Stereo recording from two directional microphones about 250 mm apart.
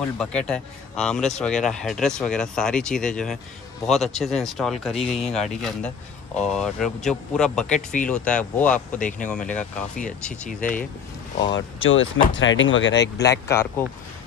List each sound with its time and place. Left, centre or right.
0.2 s speech: centre
11.5 s speech: left
13.2 s speech: centre